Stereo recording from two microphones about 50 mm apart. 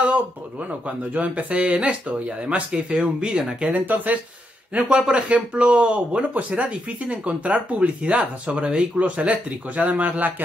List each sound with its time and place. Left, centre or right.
0.0 s speech: right
3.6 s speech: right
4.8 s speech: centre; by 10.3 s right